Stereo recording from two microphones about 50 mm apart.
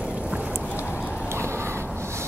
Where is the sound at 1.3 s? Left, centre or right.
Right.